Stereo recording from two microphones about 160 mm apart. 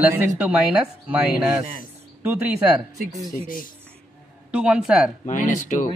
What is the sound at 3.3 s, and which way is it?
Speech, 60° left (ahead or behind).